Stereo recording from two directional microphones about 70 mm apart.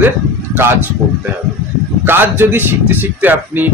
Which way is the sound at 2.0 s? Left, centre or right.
Right.